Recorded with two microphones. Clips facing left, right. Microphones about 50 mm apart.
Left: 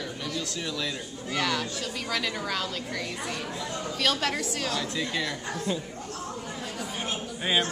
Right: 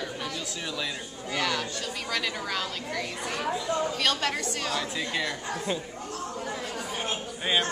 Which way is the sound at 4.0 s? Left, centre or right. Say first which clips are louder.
Even; centre.